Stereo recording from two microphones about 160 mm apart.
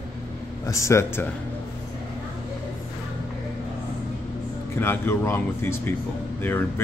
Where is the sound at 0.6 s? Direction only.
20° left (ahead or behind).